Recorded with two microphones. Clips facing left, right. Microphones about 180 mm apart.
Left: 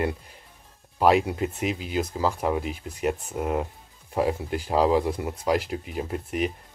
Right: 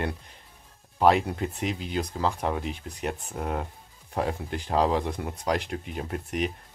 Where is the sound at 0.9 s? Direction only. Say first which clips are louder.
Left 1 dB; 5° left (ahead or behind).